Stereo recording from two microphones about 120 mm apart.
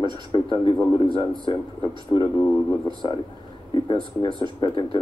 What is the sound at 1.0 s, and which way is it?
Speech, 40° right (ahead or behind).